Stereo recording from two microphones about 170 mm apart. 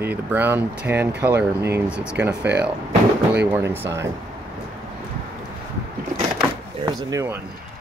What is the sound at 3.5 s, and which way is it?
Speech, 15° right (ahead or behind).